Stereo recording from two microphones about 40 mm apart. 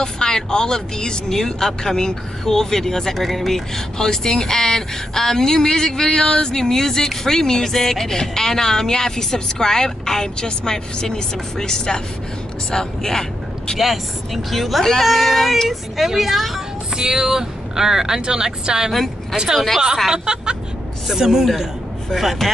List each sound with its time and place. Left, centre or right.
0.0 s speech: centre
13.7 s speech: centre